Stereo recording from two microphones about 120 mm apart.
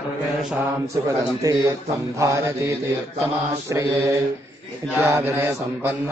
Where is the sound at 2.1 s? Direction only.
25° right (ahead or behind).